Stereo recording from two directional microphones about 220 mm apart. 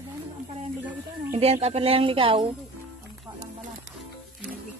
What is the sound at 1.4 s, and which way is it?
Speech, 25° right (ahead or behind).